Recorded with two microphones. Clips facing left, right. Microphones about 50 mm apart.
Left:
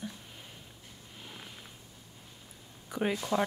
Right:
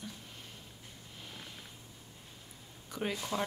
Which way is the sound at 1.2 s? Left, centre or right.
Centre.